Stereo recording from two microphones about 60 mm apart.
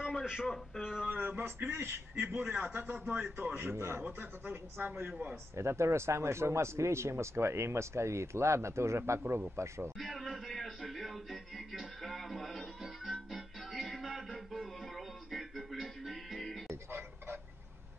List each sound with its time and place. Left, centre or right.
0.0 s a sound: centre
1.1 s a man's voice: right
1.7 s a man's voice: right
5.6 s speech: right
9.9 s speech: centre
13.3 s music: centre